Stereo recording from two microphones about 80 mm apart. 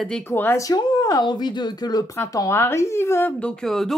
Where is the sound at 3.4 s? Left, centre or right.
Centre.